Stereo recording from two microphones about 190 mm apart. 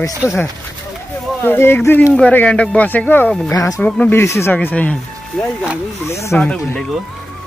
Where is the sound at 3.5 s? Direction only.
15° left (ahead or behind).